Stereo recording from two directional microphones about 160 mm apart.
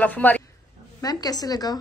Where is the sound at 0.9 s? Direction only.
25° left (ahead or behind).